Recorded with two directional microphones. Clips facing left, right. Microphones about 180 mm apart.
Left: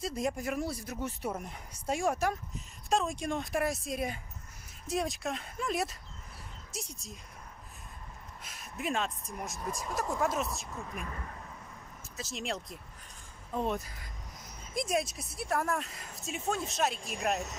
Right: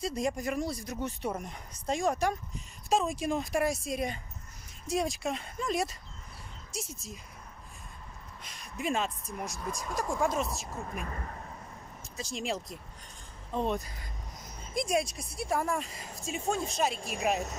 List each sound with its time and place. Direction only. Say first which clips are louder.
0.0 s speech: right 2 dB; centre (ahead or behind)
8.5 s speech: right 2 dB; 5° left (ahead or behind)
10.9 s speech: right 2 dB; 45° right (ahead or behind)
12.2 s speech: right 3 dB; centre (ahead or behind)